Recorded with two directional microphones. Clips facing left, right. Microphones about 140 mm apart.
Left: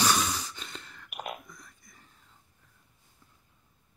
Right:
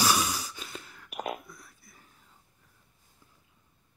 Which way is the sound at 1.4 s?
5° right (ahead or behind).